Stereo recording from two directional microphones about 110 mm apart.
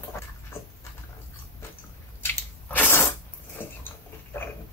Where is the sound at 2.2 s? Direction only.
15° left (ahead or behind).